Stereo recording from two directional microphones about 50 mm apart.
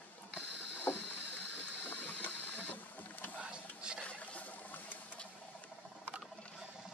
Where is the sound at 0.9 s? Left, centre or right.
Left.